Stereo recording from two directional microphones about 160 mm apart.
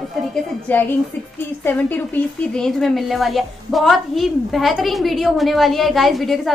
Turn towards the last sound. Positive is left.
turn(degrees=0)  # may be behind; listen again after turning